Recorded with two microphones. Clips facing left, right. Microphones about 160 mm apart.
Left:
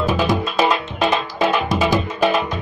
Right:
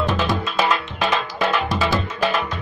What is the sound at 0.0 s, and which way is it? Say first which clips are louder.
Music: left 3 dB; 10° left (ahead or behind).